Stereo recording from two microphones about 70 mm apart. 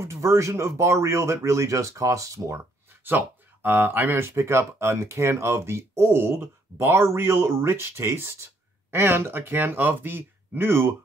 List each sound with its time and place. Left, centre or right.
0.0 s speech: right
3.0 s speech: right